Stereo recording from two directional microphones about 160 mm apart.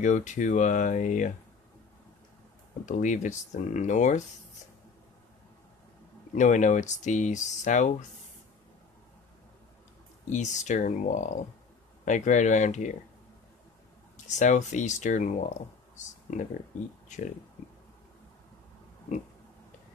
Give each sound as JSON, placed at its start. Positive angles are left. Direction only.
{"t": 0.0, "sound": "speech", "side_deg": 50}
{"t": 2.8, "sound": "speech", "side_deg": 50}
{"t": 6.3, "sound": "speech", "side_deg": 50}
{"t": 10.3, "sound": "speech", "side_deg": 50}
{"t": 14.1, "sound": "speech", "side_deg": 50}